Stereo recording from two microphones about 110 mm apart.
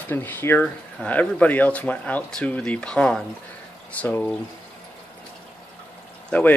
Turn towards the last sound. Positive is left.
turn(degrees=15)  # may be behind; listen again after turning